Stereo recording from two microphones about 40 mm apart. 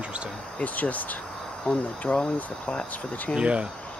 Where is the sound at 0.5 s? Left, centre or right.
Left.